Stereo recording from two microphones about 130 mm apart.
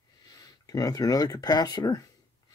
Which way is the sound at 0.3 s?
30° left (ahead or behind).